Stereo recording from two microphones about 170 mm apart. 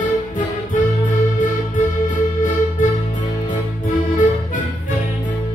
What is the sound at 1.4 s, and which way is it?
Music, 50° left (ahead or behind).